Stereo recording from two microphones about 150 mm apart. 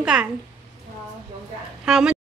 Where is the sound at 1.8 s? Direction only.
5° right (ahead or behind).